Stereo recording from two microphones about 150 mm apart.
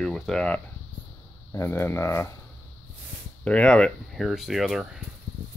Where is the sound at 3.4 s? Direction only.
5° left (ahead or behind).